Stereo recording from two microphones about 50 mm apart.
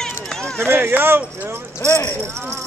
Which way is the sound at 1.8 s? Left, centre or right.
Left.